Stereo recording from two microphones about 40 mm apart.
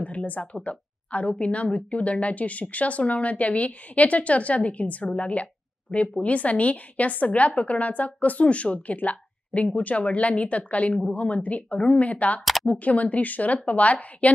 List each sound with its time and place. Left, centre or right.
0.0 s a woman's voice: left